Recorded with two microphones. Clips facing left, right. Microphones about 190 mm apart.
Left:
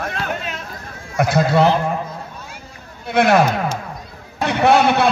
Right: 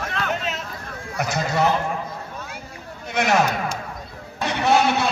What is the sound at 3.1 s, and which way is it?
A man's voice, 60° left (ahead or behind).